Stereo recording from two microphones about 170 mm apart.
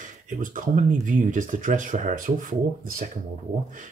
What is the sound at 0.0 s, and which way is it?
Speech, 50° right (ahead or behind).